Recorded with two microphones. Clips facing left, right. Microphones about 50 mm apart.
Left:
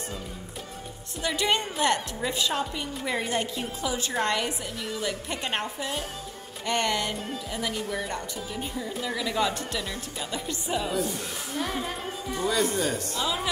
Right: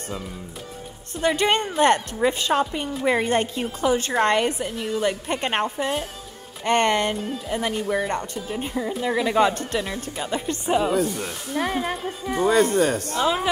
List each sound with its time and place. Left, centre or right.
1.2 s speech: right